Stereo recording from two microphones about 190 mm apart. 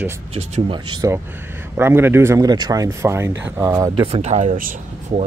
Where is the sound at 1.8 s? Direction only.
10° right (ahead or behind); by 4.7 s 45° right (ahead or behind).